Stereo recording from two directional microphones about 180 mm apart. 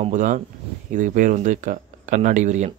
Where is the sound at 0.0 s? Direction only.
45° right (ahead or behind).